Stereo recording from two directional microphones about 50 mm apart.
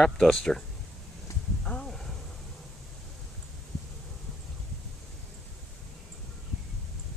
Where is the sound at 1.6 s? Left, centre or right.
Left.